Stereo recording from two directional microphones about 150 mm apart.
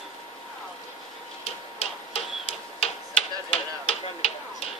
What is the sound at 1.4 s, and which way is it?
Tick-tock, 45° left (ahead or behind).